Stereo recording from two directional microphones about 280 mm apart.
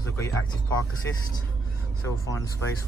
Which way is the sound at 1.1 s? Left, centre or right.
Centre.